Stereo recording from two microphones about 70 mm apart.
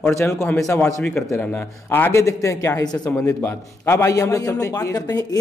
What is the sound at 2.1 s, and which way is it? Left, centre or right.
Speech, left.